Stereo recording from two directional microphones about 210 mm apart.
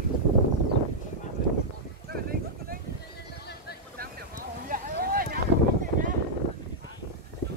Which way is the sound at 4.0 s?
45° right (ahead or behind).